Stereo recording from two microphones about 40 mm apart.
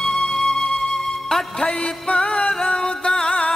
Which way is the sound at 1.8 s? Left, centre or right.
Left.